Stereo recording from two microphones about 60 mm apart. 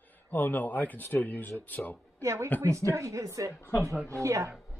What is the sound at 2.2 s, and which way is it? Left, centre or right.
Speech, right.